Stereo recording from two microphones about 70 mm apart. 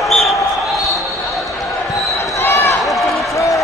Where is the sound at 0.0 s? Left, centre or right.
Centre.